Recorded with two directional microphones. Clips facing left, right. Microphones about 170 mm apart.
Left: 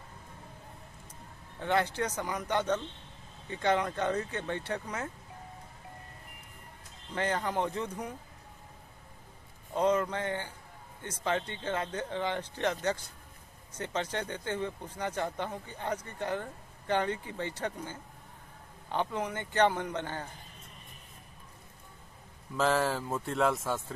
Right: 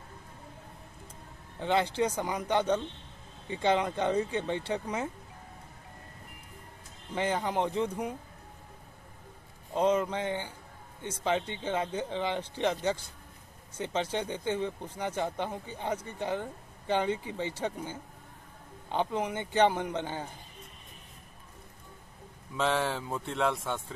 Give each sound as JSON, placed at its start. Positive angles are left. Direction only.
{"t": 1.6, "sound": "speech", "side_deg": -20}
{"t": 7.2, "sound": "speech", "side_deg": -10}
{"t": 9.8, "sound": "speech", "side_deg": -25}
{"t": 10.0, "sound": "speech", "side_deg": -15}
{"t": 18.9, "sound": "speech", "side_deg": -20}
{"t": 22.6, "sound": "speech", "side_deg": 0}